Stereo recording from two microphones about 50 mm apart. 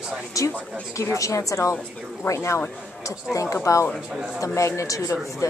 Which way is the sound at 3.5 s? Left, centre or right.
Left.